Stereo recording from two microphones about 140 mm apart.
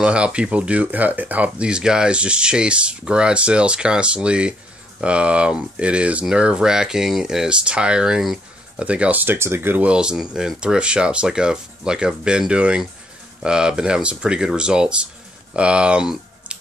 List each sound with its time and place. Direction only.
0.0 s speech: 10° right (ahead or behind)